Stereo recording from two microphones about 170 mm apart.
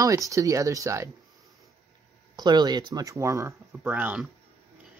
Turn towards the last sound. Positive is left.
turn(degrees=-10)  # may be behind; listen again after turning